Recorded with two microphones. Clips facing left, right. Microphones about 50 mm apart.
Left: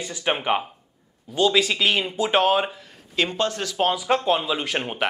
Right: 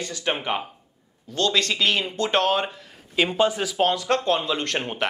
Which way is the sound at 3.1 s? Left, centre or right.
Centre.